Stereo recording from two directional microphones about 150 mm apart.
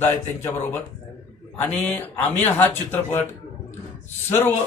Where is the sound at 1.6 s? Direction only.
10° left (ahead or behind).